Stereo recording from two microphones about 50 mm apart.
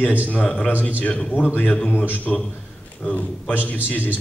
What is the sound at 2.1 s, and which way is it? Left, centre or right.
A man's voice, left.